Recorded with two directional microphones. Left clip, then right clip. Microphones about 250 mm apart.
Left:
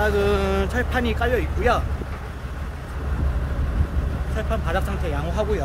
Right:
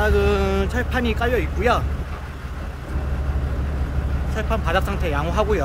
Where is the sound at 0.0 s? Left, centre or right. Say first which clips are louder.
Right 1 dB; centre.